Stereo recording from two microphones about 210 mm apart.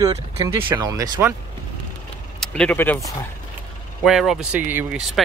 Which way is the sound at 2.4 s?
5° left (ahead or behind).